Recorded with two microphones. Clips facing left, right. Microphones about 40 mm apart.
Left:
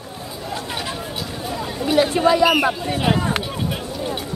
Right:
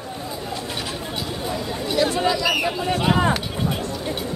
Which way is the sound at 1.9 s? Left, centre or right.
Left.